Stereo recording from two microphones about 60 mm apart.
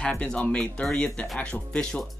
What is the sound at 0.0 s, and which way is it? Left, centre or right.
Speech, centre.